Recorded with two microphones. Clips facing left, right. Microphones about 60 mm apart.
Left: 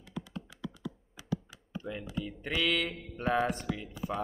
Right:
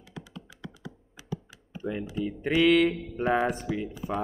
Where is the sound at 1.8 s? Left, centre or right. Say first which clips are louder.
Right 6 dB; centre.